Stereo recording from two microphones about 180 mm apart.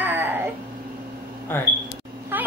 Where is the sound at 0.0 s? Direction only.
10° right (ahead or behind).